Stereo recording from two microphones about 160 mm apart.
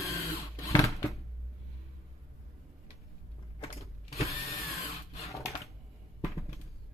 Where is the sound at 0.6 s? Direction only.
20° left (ahead or behind).